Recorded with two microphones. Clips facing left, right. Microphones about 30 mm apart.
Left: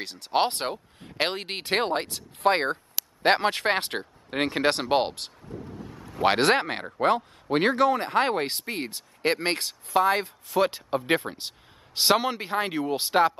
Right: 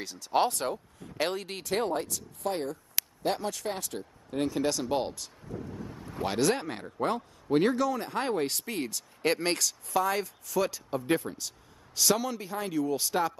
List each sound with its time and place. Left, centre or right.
0.0 s speech: left
5.7 s a sound: left
6.2 s speech: left
8.5 s speech: left